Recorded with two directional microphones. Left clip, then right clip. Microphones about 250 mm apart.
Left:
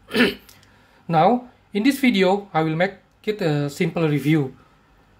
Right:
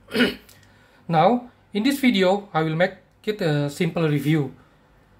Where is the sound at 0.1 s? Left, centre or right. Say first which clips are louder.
Left 2 dB; centre.